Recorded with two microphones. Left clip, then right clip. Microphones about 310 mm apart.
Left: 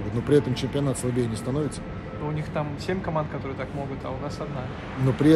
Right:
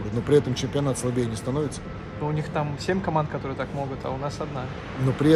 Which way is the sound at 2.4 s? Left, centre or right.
Right.